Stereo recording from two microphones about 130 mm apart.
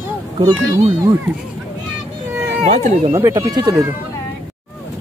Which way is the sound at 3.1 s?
25° right (ahead or behind).